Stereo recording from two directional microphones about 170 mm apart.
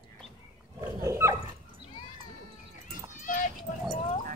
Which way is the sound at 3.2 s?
50° left (ahead or behind).